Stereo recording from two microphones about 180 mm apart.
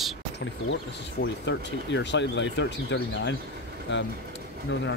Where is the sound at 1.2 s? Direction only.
85° left.